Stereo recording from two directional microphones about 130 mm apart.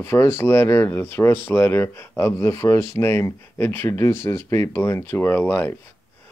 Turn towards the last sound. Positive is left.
turn(degrees=15)  # may be behind; listen again after turning